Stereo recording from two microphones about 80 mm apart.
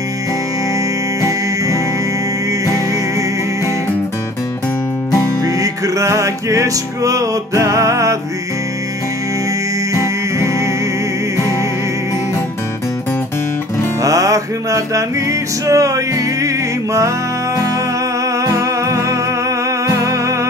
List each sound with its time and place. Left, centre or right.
5.4 s music: right
14.0 s music: right
18.4 s music: right